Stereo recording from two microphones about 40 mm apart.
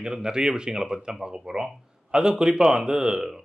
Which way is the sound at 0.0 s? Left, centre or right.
Centre.